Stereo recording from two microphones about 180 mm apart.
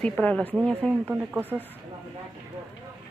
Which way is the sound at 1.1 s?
10° right (ahead or behind).